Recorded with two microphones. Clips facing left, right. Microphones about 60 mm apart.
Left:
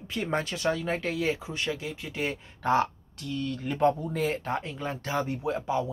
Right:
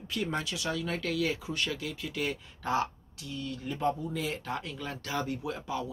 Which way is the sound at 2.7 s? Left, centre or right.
Left.